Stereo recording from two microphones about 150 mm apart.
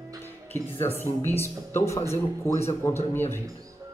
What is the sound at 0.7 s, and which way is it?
Speech, 15° left (ahead or behind).